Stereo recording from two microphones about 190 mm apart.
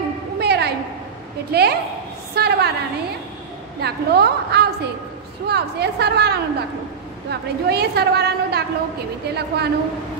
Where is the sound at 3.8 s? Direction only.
60° right (ahead or behind).